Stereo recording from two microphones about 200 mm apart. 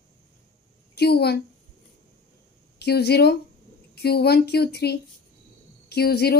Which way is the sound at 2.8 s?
55° left (ahead or behind).